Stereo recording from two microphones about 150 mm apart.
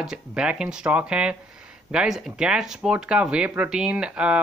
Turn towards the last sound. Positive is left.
turn(degrees=-10)  # may be behind; listen again after turning